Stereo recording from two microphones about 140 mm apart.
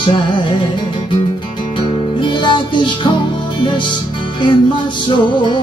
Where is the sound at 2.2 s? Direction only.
35° left (ahead or behind).